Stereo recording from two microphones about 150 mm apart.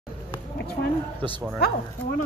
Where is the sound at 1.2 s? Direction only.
30° right (ahead or behind).